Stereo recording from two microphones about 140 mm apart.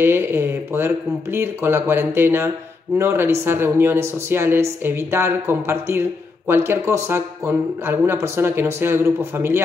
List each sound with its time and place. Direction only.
0.0 s speech: 15° right (ahead or behind)